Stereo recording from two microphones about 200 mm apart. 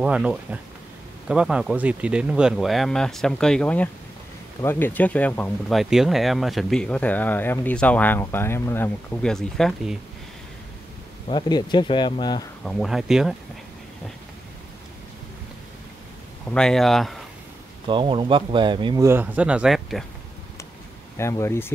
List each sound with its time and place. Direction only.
0.0 s speech: 5° right (ahead or behind)
11.2 s speech: 20° left (ahead or behind)
12.6 s speech: centre (ahead or behind)
16.4 s speech: 5° left (ahead or behind)
17.8 s speech: 25° right (ahead or behind); by 20.1 s centre (ahead or behind)
21.2 s speech: 15° left (ahead or behind)